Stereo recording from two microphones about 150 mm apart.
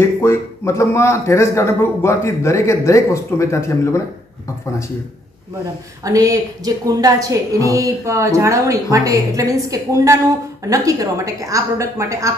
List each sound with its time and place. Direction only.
0.0 s a man's voice: 15° left (ahead or behind)
6.0 s a woman's voice: 20° right (ahead or behind)